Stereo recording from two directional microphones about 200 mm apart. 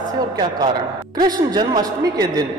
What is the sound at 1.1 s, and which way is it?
A man's voice, 20° right (ahead or behind).